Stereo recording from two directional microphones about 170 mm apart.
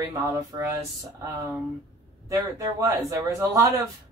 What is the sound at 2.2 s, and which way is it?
Speech, 20° right (ahead or behind).